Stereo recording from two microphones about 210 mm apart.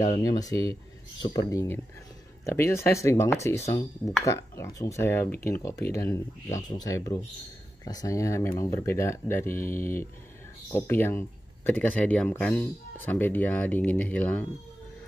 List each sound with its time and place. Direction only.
0.2 s speech: 15° left (ahead or behind)